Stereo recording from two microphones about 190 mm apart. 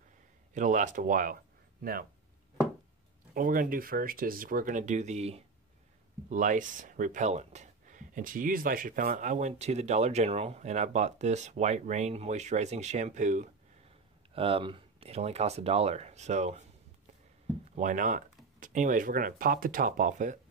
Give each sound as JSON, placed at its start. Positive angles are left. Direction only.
{"t": 0.6, "sound": "speech", "side_deg": -40}
{"t": 3.3, "sound": "speech", "side_deg": -45}
{"t": 14.3, "sound": "speech", "side_deg": -30}
{"t": 17.7, "sound": "speech", "side_deg": -45}